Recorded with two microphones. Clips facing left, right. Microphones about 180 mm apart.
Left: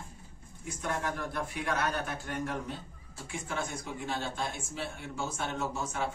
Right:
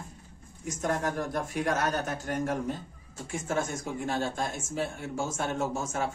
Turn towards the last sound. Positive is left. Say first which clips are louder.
# right 3 dB
turn(degrees=-45)  # may be behind; listen again after turning